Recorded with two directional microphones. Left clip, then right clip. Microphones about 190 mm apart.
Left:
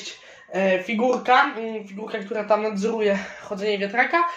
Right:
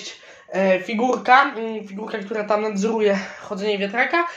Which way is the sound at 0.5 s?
40° right (ahead or behind).